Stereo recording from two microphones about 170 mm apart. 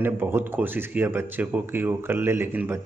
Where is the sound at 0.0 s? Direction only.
15° right (ahead or behind).